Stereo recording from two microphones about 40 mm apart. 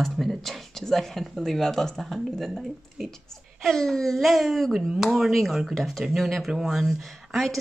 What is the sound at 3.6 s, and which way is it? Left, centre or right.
Speech, centre.